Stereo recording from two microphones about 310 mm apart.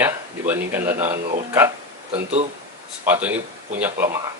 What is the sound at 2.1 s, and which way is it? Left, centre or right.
Speech, right.